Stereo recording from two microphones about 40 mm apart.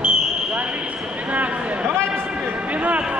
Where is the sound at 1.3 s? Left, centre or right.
Right.